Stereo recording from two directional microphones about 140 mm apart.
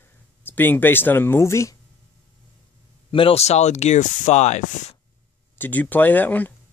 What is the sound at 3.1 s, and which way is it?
Speech, 40° left (ahead or behind).